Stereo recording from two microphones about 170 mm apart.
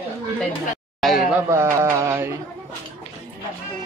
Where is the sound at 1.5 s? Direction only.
15° right (ahead or behind).